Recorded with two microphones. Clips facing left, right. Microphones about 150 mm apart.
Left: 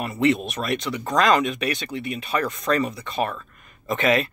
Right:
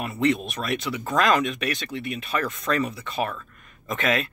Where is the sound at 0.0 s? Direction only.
Centre (ahead or behind).